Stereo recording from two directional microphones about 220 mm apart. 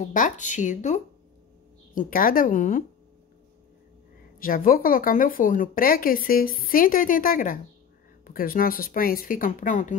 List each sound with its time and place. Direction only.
0.0 s speech: 35° left (ahead or behind)
4.4 s speech: 40° left (ahead or behind)